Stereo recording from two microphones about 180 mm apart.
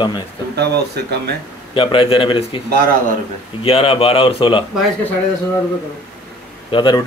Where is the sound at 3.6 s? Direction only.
30° left (ahead or behind).